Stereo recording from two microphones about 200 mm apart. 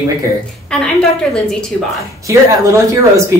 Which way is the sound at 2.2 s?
15° right (ahead or behind).